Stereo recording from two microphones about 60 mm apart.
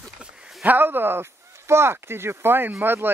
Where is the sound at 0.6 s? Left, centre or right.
Right.